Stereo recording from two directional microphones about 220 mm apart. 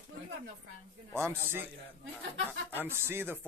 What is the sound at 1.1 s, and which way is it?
Speech, 10° right (ahead or behind).